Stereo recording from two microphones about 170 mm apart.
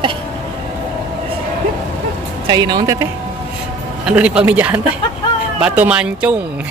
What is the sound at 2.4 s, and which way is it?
Speech, 25° right (ahead or behind).